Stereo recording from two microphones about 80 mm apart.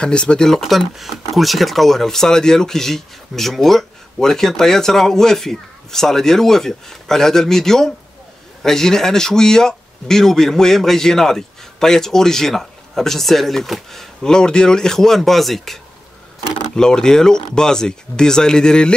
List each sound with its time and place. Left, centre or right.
0.0 s speech: centre